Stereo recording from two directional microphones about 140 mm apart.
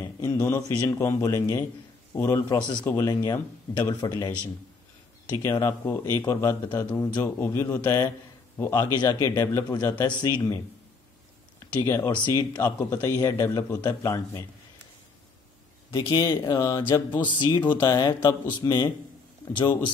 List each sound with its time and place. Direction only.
0.0 s speech: 20° left (ahead or behind)
3.9 s speech: 30° left (ahead or behind)
10.0 s speech: 35° left (ahead or behind)
12.5 s speech: 15° left (ahead or behind)
13.2 s speech: 25° left (ahead or behind)
15.9 s speech: 30° left (ahead or behind)